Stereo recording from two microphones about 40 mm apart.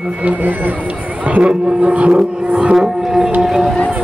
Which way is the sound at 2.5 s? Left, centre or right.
Centre.